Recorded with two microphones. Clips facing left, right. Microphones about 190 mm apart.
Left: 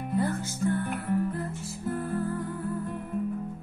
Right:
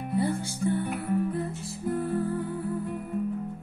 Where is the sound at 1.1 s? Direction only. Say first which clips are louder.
Right 1 dB; 20° right (ahead or behind).